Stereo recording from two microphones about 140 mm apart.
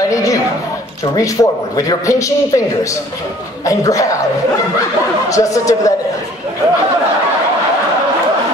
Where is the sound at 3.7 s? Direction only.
25° left (ahead or behind).